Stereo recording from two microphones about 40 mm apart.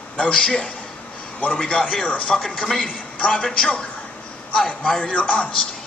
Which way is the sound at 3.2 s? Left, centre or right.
Left.